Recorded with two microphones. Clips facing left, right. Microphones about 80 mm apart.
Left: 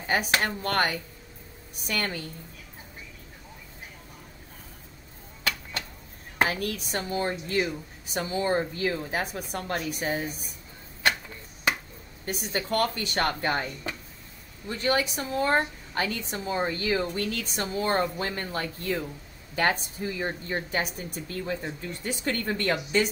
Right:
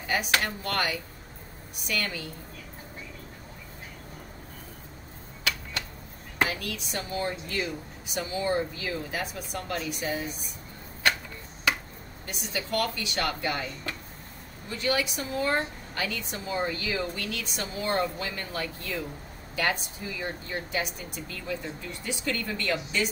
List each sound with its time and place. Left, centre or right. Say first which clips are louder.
0.1 s a woman's voice: left 2 dB; left
6.3 s a woman's voice: left 2 dB; left
12.3 s a woman's voice: left 3 dB; left
14.7 s a woman's voice: left 2 dB; left